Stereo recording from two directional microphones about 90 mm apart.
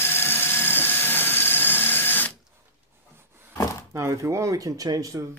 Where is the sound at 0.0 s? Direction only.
25° left (ahead or behind).